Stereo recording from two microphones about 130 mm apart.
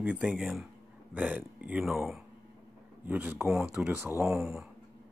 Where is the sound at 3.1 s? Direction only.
15° right (ahead or behind).